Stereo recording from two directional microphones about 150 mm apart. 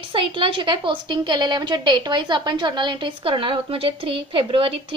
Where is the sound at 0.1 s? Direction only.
35° right (ahead or behind).